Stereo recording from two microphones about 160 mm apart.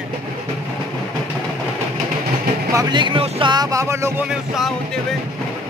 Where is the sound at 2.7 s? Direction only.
25° right (ahead or behind).